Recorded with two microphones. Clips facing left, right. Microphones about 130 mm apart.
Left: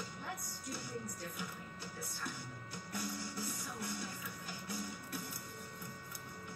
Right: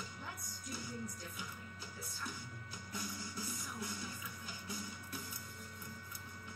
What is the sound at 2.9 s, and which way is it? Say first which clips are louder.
Music: left 3 dB; 60° left (ahead or behind).